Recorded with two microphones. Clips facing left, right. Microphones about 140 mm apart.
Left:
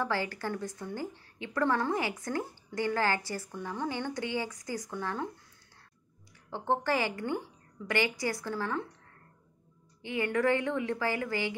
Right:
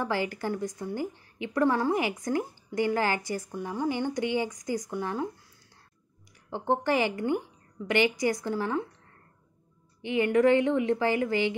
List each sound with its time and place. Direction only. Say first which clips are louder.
0.0 s a woman's voice: right 3 dB; 15° right (ahead or behind)
6.5 s a woman's voice: right 3 dB; 15° right (ahead or behind)
10.0 s a woman's voice: right 6 dB; 20° right (ahead or behind)